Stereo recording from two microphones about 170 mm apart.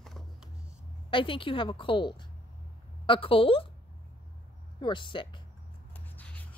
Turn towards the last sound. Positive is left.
turn(degrees=10)  # may be behind; listen again after turning